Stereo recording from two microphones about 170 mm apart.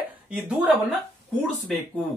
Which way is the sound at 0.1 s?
10° right (ahead or behind).